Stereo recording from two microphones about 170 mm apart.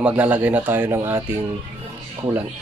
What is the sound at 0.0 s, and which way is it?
Speech, 10° right (ahead or behind).